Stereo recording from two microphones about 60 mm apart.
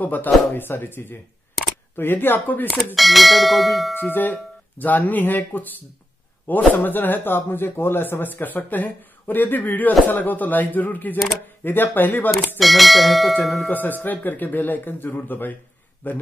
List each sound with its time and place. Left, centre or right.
0.0 s speech: left
3.0 s speech: centre
3.9 s speech: left
12.5 s speech: centre
13.7 s speech: left